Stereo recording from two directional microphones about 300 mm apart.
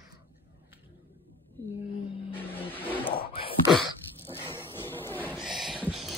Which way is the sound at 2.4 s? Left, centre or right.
Centre.